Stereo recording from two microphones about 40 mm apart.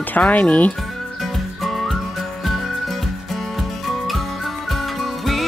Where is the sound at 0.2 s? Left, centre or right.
Left.